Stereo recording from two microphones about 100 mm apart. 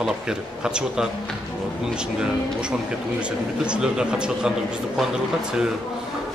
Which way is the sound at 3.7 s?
10° right (ahead or behind).